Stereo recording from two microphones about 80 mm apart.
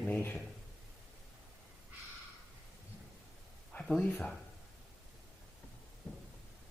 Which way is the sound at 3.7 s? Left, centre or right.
Centre.